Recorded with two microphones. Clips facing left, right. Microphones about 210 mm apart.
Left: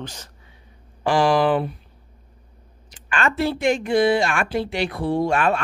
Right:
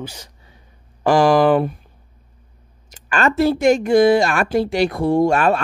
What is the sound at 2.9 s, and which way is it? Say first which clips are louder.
Speech: right 5 dB; 40° right (ahead or behind).